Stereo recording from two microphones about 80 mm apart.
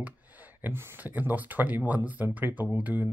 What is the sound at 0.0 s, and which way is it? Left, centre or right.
Speech, right.